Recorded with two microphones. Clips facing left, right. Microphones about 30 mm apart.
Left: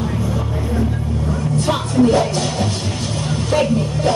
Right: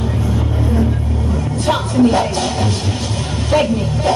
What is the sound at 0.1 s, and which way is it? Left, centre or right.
Music, centre.